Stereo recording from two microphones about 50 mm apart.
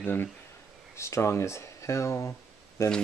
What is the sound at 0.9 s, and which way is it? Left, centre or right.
Speech, left.